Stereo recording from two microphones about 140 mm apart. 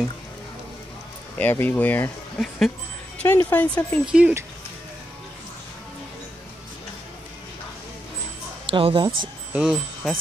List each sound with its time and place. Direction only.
1.4 s speech: 15° left (ahead or behind)
2.3 s speech: centre (ahead or behind)
3.2 s speech: 15° left (ahead or behind)
4.0 s speech: 5° right (ahead or behind)
8.7 s speech: 35° right (ahead or behind)
9.5 s speech: 5° right (ahead or behind)